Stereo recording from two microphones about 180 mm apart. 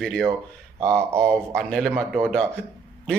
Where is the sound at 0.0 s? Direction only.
5° left (ahead or behind).